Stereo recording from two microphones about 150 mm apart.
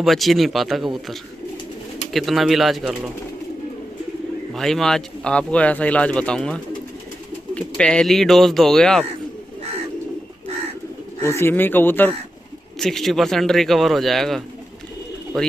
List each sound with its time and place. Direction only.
0.0 s speech: centre (ahead or behind)
2.1 s speech: centre (ahead or behind)
4.6 s speech: centre (ahead or behind)
11.2 s speech: 15° left (ahead or behind)
12.7 s speech: centre (ahead or behind)